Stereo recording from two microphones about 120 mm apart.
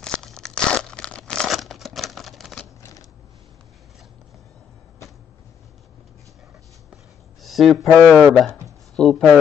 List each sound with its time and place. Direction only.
0.0 s tearing: 5° left (ahead or behind)
2.8 s a sound: 30° left (ahead or behind)
7.4 s speech: centre (ahead or behind)